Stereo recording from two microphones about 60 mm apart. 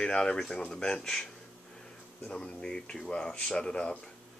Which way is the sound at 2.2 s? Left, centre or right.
Centre.